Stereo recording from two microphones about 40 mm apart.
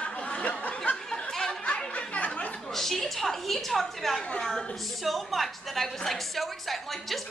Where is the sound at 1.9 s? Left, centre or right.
Left.